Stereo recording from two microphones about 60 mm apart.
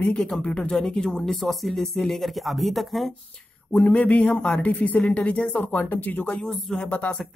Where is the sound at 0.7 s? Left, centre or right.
Centre.